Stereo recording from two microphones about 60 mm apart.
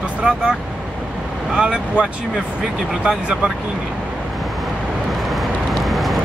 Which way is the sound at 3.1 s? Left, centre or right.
Centre.